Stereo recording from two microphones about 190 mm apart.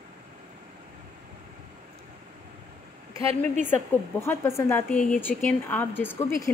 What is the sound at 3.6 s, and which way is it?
A woman's voice, 10° left (ahead or behind).